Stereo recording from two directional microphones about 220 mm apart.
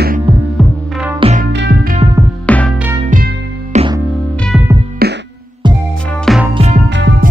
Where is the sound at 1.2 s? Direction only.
35° right (ahead or behind).